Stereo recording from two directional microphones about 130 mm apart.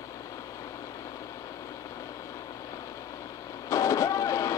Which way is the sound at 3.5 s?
25° left (ahead or behind).